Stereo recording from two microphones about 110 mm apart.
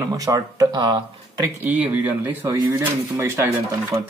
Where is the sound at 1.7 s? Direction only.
15° right (ahead or behind).